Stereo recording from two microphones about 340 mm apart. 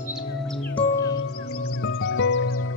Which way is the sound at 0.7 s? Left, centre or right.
Centre.